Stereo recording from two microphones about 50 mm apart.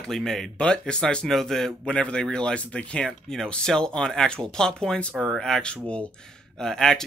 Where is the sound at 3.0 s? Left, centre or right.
Centre.